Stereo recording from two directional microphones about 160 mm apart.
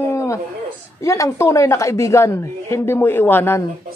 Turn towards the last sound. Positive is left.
turn(degrees=15)  # may be behind; listen again after turning